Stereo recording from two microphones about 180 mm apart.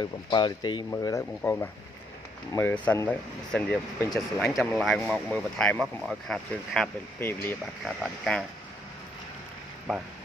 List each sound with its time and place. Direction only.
0.3 s speech: 25° left (ahead or behind)
7.8 s speech: centre (ahead or behind)